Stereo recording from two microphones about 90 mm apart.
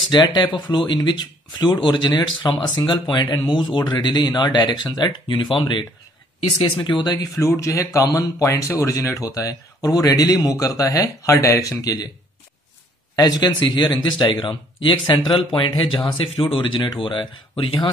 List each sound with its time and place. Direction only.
0.1 s speech: 55° left (ahead or behind)
7.3 s speech: 35° left (ahead or behind)
13.1 s speech: 50° left (ahead or behind); by 17.8 s 75° left (ahead or behind)